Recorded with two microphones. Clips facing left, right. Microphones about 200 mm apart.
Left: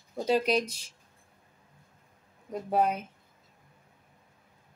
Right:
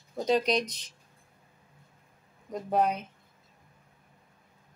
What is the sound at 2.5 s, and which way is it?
Speech, 5° left (ahead or behind).